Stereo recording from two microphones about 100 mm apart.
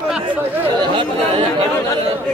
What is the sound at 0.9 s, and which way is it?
Speech, 65° right (ahead or behind).